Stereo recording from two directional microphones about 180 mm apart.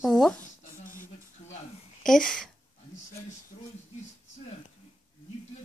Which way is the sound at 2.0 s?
5° left (ahead or behind).